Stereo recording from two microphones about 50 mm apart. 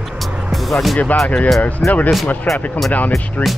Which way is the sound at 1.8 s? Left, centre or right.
Centre.